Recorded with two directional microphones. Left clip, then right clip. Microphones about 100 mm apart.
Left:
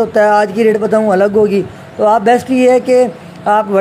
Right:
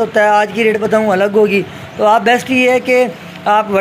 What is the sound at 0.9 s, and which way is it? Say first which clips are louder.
A man's voice: even; 45° left (ahead or behind).